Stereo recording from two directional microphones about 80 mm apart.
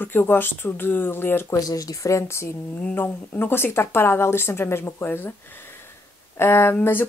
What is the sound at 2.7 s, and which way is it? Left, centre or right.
A woman's voice, left.